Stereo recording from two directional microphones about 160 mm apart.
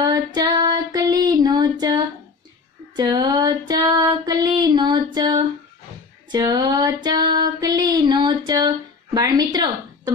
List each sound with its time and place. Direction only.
0.0 s female singing: 25° right (ahead or behind)
3.0 s a sound: 25° right (ahead or behind)
6.3 s female singing: 25° right (ahead or behind)